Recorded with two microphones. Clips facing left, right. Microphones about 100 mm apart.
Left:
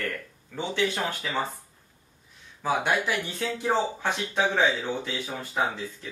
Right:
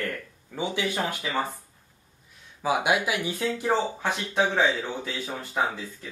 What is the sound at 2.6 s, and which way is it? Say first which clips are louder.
Speech: right 1 dB; 10° right (ahead or behind).